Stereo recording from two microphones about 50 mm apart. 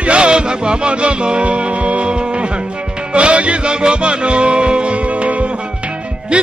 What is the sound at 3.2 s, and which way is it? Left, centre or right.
Music, right.